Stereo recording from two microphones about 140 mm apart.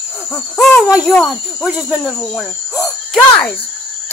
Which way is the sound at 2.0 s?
5° left (ahead or behind).